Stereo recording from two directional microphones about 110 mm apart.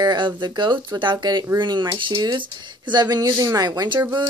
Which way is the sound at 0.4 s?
45° right (ahead or behind).